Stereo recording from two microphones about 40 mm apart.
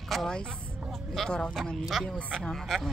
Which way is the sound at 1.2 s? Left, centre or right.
Left.